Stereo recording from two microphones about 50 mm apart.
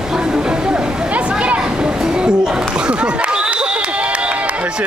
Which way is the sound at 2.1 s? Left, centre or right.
Centre.